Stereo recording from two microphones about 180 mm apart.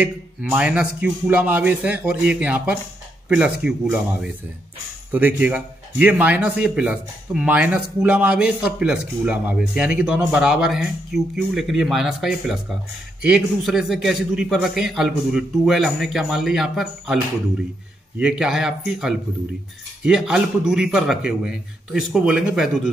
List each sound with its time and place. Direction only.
0.0 s a man's voice: 5° right (ahead or behind)
18.2 s a man's voice: 5° right (ahead or behind)